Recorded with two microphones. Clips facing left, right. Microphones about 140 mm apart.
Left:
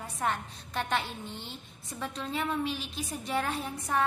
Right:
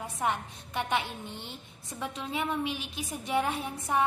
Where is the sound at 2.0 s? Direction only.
10° right (ahead or behind).